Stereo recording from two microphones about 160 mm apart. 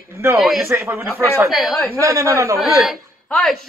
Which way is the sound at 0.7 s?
15° right (ahead or behind).